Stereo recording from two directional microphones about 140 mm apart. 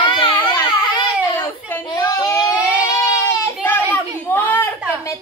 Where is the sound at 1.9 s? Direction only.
25° left (ahead or behind).